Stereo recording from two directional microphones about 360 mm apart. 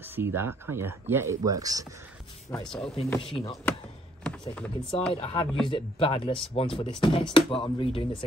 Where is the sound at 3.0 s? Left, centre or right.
Centre.